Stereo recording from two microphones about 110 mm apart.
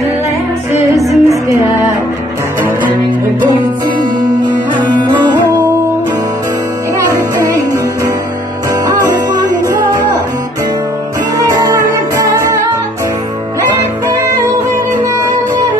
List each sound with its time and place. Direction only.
1.0 s music: 30° right (ahead or behind)
4.7 s music: 45° right (ahead or behind)
7.4 s music: 30° right (ahead or behind)
11.3 s music: 35° right (ahead or behind)